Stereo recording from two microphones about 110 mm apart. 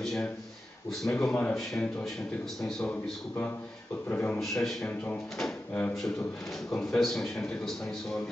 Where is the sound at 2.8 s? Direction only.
20° left (ahead or behind).